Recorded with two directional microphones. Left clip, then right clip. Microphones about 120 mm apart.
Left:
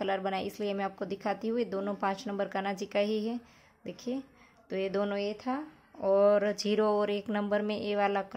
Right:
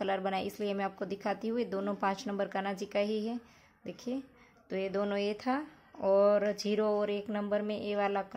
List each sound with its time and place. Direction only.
0.0 s a woman's voice: 10° left (ahead or behind)
5.1 s speech: 5° right (ahead or behind)
6.1 s speech: 15° left (ahead or behind)